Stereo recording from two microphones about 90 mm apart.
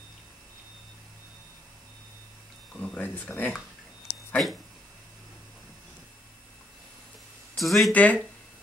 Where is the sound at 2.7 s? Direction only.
20° left (ahead or behind).